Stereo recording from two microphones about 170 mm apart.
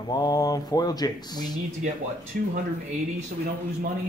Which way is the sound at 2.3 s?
55° right (ahead or behind).